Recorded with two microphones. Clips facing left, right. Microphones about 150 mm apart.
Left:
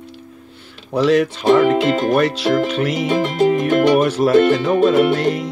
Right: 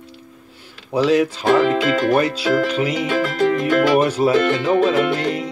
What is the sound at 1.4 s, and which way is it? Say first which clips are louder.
Speech: left 5 dB; 20° left (ahead or behind).